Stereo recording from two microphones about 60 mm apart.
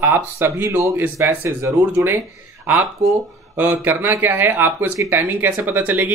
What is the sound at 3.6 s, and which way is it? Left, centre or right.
Speech, right.